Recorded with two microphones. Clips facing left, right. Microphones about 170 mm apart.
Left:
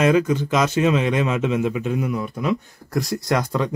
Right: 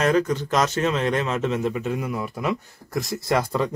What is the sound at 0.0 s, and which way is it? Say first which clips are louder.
A man's voice: left 3 dB; 5° left (ahead or behind).